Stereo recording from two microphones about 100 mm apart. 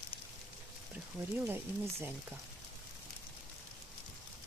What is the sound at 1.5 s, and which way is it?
Speech, 25° right (ahead or behind).